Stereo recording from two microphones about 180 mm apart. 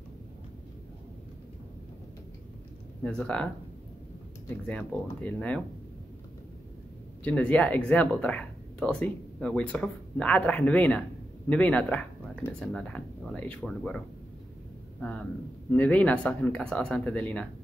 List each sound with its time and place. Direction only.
3.0 s speech: 5° left (ahead or behind)
4.6 s speech: 5° left (ahead or behind)
7.2 s speech: 5° left (ahead or behind)